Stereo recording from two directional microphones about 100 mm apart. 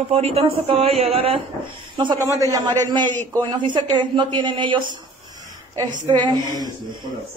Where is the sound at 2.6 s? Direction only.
50° right (ahead or behind).